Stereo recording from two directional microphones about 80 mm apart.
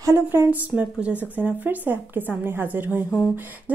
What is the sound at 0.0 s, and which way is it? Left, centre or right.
Speech, right.